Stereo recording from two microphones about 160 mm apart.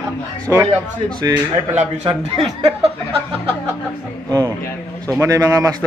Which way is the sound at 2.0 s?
40° right (ahead or behind).